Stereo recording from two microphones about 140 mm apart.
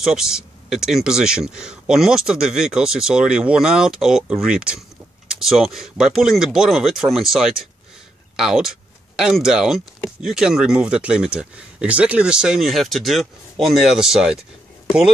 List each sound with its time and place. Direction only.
0.0 s speech: 5° right (ahead or behind)